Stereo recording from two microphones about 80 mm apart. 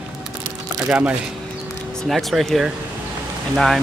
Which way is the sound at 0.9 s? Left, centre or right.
Centre.